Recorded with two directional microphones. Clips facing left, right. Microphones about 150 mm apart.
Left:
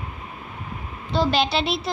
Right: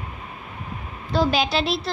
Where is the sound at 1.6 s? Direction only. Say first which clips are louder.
Even; 35° right (ahead or behind).